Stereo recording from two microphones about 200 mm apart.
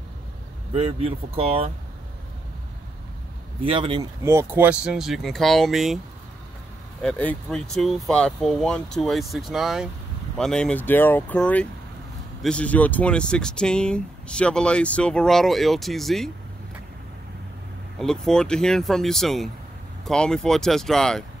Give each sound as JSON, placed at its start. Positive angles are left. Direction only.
{"t": 0.7, "sound": "speech", "side_deg": -30}
{"t": 3.6, "sound": "speech", "side_deg": -25}
{"t": 4.2, "sound": "speech", "side_deg": -15}
{"t": 7.0, "sound": "speech", "side_deg": 5}
{"t": 17.9, "sound": "speech", "side_deg": 0}